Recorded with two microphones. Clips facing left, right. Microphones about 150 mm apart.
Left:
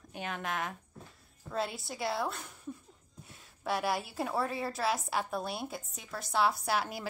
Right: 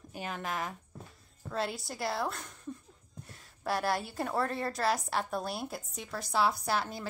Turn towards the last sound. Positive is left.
turn(degrees=5)  # may be behind; listen again after turning